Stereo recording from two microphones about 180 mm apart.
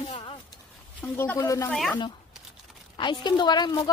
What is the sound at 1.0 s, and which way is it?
Speech, 10° left (ahead or behind).